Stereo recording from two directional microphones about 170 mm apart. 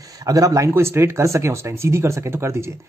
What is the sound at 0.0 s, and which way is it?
Speech, 20° right (ahead or behind).